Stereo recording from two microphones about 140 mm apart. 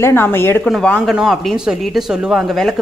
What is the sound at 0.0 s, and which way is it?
Speech, 15° left (ahead or behind).